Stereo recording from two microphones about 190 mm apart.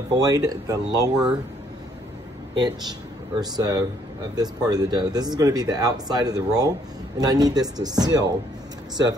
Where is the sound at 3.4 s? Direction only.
20° right (ahead or behind).